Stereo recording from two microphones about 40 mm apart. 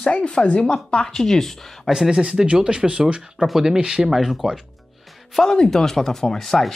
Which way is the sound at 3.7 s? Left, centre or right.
Right.